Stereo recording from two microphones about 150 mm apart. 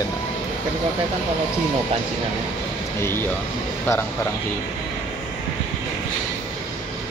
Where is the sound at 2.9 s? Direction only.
15° left (ahead or behind).